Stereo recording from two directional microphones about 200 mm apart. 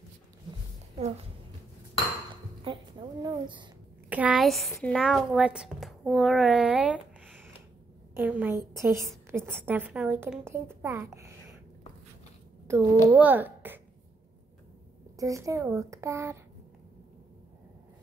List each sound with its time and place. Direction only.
2.6 s a woman's voice: 25° right (ahead or behind)
4.1 s a woman's voice: 5° right (ahead or behind)
8.1 s a woman's voice: 10° right (ahead or behind)
12.6 s a woman's voice: 15° right (ahead or behind)
15.1 s a woman's voice: 15° right (ahead or behind)